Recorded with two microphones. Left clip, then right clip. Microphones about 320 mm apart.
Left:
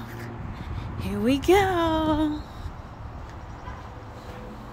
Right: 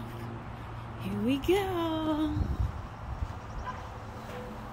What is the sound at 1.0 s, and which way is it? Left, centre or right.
Speech, centre.